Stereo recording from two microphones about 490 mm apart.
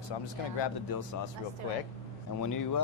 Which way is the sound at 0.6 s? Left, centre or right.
Left.